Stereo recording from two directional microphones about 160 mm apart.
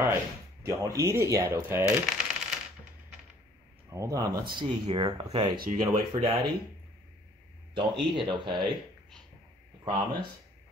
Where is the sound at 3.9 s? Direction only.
20° right (ahead or behind).